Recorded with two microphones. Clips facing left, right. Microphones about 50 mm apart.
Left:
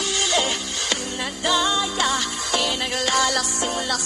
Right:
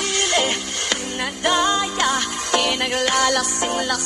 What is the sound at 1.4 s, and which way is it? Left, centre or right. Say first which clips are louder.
Music: right 2 dB; right.